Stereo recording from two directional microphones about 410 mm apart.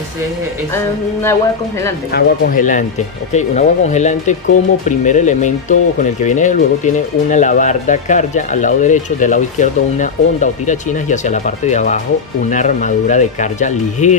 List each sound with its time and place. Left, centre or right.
2.1 s speech: left